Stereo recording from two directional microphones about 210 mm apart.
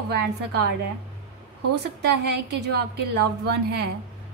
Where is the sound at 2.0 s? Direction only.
55° right (ahead or behind).